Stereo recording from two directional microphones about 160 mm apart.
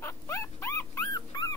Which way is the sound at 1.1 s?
25° left (ahead or behind).